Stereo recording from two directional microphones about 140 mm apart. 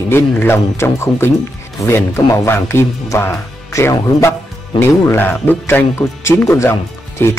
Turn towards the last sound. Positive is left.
turn(degrees=20)  # may be behind; listen again after turning